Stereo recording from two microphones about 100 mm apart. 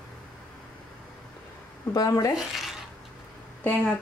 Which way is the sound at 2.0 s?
30° left (ahead or behind).